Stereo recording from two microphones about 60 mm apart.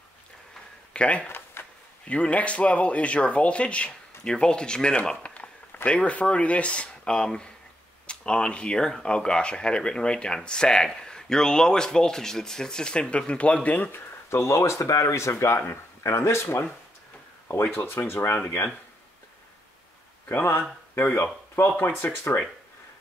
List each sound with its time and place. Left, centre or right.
0.9 s speech: centre
1.3 s a sound: left
2.0 s speech: left
5.2 s a sound: left
5.9 s speech: centre
13.9 s speech: left
20.2 s speech: left